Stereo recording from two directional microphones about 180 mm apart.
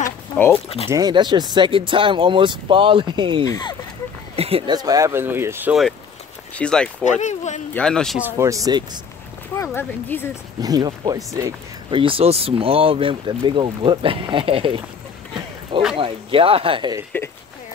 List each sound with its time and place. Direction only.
0.0 s a sound: 10° left (ahead or behind)
0.8 s speech: 20° right (ahead or behind)
3.4 s speech: 20° left (ahead or behind)
4.4 s speech: 30° right (ahead or behind); by 5.8 s 10° right (ahead or behind)
6.5 s speech: 5° left (ahead or behind)
7.1 s speech: 40° left (ahead or behind)
7.7 s speech: 5° left (ahead or behind)
8.2 s speech: 15° right (ahead or behind)
9.6 s speech: 10° left (ahead or behind)
10.6 s speech: 20° right (ahead or behind)
16.0 s speech: 30° right (ahead or behind)
17.1 s speech: 10° left (ahead or behind)